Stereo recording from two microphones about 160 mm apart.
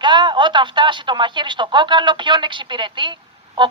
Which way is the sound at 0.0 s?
30° right (ahead or behind).